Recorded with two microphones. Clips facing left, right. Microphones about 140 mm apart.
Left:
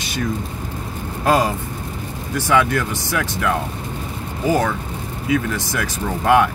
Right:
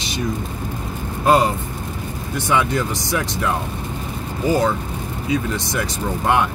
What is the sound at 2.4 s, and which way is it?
Speech, 20° right (ahead or behind).